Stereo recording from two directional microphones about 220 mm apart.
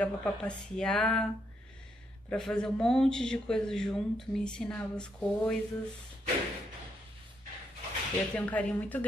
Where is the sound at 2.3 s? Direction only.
5° left (ahead or behind).